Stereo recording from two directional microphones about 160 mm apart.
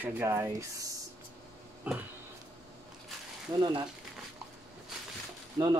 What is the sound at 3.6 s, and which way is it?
Speech, 25° right (ahead or behind).